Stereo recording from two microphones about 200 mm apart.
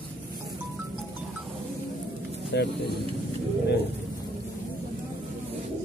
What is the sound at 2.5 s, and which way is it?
Speech, 55° left (ahead or behind).